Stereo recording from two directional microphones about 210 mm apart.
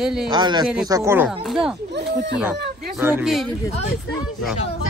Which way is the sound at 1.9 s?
55° right (ahead or behind).